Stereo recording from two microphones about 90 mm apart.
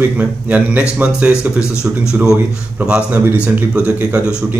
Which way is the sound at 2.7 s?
15° right (ahead or behind).